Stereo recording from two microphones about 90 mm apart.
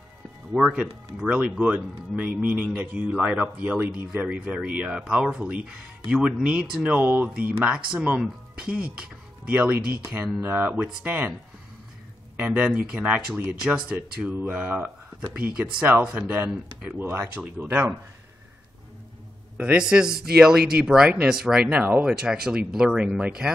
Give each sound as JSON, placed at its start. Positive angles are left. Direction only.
{"t": 0.5, "sound": "speech", "side_deg": -10}
{"t": 12.4, "sound": "speech", "side_deg": -15}
{"t": 19.5, "sound": "speech", "side_deg": -10}